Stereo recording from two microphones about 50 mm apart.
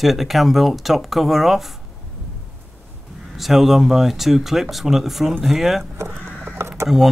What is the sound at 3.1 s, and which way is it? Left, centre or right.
Speech, centre.